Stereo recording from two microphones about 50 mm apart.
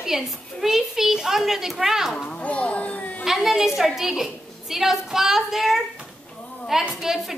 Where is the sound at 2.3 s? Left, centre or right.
Left.